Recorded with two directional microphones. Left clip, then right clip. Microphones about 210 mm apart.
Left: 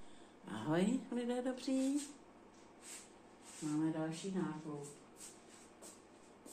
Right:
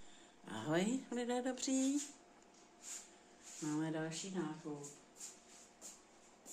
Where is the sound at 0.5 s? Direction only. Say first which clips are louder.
Left 1 dB; 30° right (ahead or behind).